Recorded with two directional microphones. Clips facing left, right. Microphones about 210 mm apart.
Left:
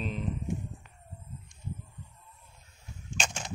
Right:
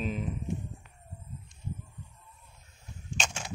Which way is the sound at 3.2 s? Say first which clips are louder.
Left 1 dB; 5° right (ahead or behind).